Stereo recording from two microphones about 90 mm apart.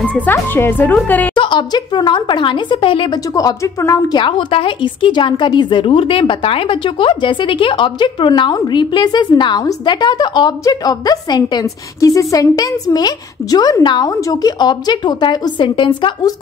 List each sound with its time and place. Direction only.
0.0 s a woman's voice: 15° left (ahead or behind)
1.3 s speech: 65° left (ahead or behind)
3.3 s a woman's voice: 40° left (ahead or behind)
4.2 s a woman's voice: 65° left (ahead or behind)
8.7 s a woman's voice: 55° left (ahead or behind)